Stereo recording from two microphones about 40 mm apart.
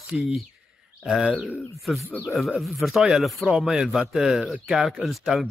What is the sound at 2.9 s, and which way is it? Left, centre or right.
Speech, centre.